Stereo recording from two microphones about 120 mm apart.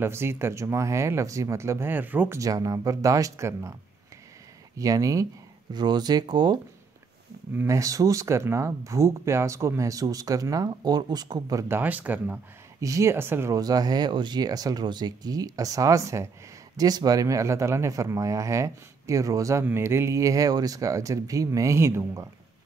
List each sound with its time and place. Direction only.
0.0 s speech: 20° right (ahead or behind)
4.7 s speech: 30° right (ahead or behind)
7.5 s speech: 25° right (ahead or behind)
11.6 s speech: 15° right (ahead or behind)
12.8 s speech: 25° right (ahead or behind)
13.6 s speech: 35° right (ahead or behind)